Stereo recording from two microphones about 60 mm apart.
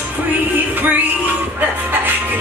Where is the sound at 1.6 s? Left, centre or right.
Right.